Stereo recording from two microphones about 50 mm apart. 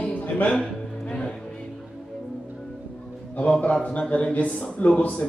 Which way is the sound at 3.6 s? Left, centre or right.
Left.